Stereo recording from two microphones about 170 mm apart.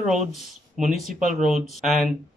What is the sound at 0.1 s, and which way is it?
Speech, centre (ahead or behind).